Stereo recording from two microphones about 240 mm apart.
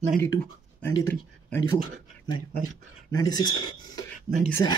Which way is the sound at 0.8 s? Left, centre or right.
Centre.